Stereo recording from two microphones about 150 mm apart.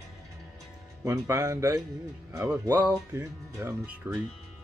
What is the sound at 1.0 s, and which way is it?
Speech, 20° right (ahead or behind).